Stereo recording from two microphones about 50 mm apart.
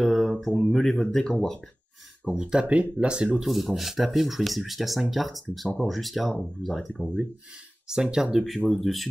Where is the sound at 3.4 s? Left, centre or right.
Centre.